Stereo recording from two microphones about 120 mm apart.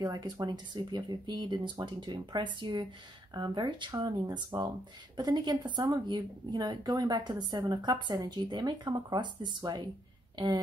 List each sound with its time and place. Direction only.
0.0 s speech: 35° right (ahead or behind)